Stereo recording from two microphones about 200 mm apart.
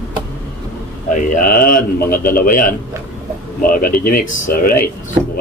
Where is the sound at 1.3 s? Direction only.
45° left (ahead or behind).